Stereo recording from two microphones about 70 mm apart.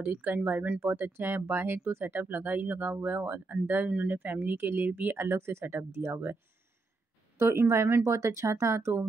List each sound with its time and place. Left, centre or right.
0.0 s speech: right
7.3 s speech: right